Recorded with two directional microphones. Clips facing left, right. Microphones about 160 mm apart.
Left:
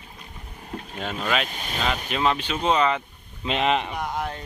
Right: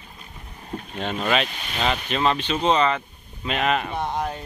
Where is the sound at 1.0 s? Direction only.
Centre (ahead or behind).